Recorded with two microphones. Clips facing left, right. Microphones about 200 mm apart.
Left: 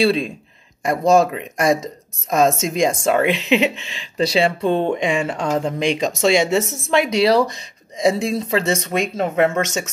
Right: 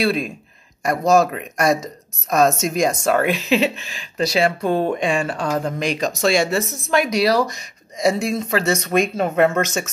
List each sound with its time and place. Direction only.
0.0 s speech: 30° left (ahead or behind)